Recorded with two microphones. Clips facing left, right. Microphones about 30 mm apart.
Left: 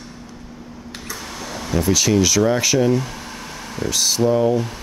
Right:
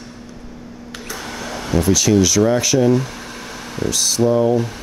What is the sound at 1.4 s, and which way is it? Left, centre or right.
Air conditioning, centre.